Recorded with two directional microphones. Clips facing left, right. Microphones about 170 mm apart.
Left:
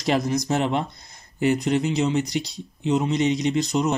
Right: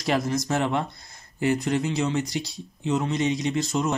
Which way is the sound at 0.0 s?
20° left (ahead or behind).